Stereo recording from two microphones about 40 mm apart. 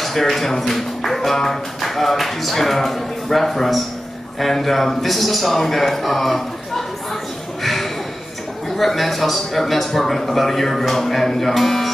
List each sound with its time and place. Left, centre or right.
0.0 s speech: centre
7.6 s a sound: centre
8.6 s speech: centre